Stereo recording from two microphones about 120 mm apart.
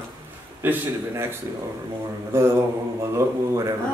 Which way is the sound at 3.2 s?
30° right (ahead or behind).